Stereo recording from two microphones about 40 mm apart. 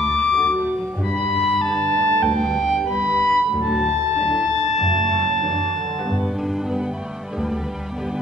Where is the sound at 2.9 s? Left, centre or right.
Right.